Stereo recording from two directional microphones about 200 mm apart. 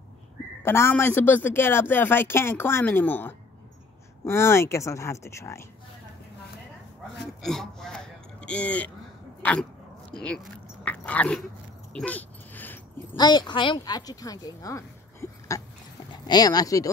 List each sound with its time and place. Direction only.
0.7 s speech: 10° left (ahead or behind)
7.4 s a man's voice: centre (ahead or behind)
9.4 s dog: 5° left (ahead or behind)
10.2 s speech: 5° left (ahead or behind)
11.9 s dog: 5° left (ahead or behind)
13.1 s speech: 20° left (ahead or behind)